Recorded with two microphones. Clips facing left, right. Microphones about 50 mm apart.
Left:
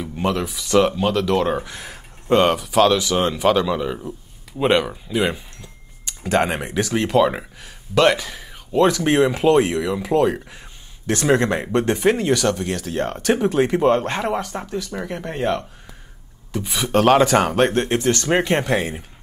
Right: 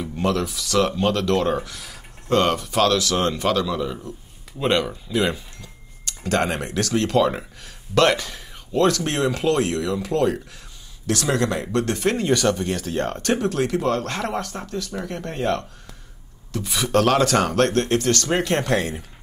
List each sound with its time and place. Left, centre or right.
0.2 s speech: centre
0.9 s speech: centre
1.7 s a sound: left
2.3 s speech: centre
2.6 s speech: centre
2.9 s speech: centre
3.5 s speech: left; by 8.8 s centre
8.8 s speech: centre
11.1 s speech: left; by 13.5 s centre
13.5 s speech: left